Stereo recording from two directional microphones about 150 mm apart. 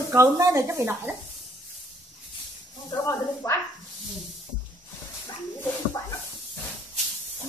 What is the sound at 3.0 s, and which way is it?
Speech, 20° left (ahead or behind).